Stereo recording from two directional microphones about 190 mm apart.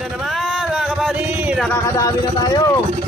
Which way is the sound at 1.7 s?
20° left (ahead or behind).